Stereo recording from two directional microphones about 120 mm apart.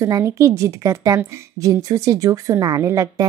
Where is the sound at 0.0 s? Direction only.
25° right (ahead or behind).